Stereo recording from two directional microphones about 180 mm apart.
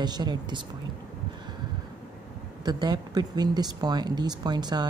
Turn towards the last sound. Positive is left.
turn(degrees=-25)  # may be behind; listen again after turning